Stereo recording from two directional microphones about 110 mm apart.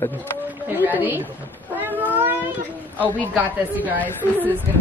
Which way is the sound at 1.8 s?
15° right (ahead or behind).